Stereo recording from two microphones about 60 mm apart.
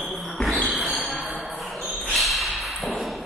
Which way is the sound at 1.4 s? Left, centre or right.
Centre.